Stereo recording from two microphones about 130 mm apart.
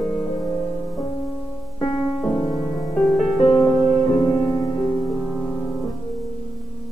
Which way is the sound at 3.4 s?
45° left (ahead or behind).